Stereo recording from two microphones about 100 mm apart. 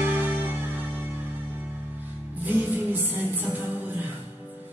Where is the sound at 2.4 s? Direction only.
20° right (ahead or behind).